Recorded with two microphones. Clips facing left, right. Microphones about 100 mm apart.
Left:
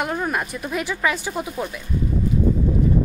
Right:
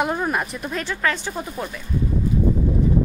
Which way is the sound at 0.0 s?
5° right (ahead or behind).